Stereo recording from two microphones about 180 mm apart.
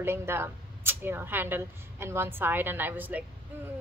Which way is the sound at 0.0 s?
15° right (ahead or behind).